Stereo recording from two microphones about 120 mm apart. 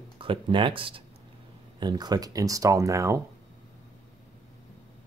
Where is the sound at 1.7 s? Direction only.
35° right (ahead or behind).